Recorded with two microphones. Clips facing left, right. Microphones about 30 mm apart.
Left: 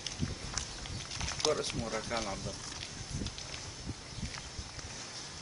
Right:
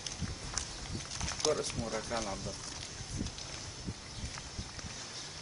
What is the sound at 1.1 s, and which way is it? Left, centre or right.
Speech, centre.